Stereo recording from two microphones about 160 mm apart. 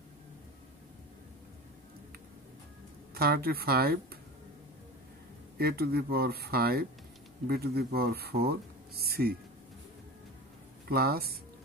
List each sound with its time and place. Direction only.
3.2 s speech: 70° right (ahead or behind)
5.6 s speech: 75° right (ahead or behind)
10.9 s speech: 75° right (ahead or behind)